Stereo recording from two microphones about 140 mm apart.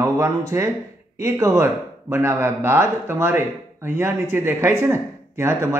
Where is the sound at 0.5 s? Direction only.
15° right (ahead or behind).